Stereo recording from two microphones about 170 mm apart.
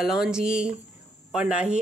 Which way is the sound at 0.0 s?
Centre (ahead or behind).